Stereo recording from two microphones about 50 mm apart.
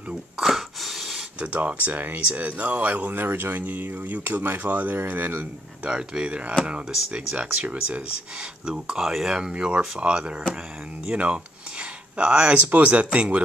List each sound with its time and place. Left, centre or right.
0.4 s a sound: centre
1.4 s speech: right
5.9 s speech: right
8.4 s speech: centre
11.1 s a sound: right
12.6 s speech: right